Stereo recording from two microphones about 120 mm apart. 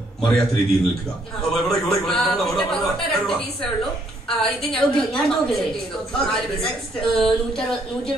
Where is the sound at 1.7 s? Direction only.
5° left (ahead or behind).